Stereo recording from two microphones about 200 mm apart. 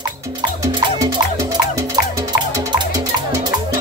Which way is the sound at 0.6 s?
15° right (ahead or behind).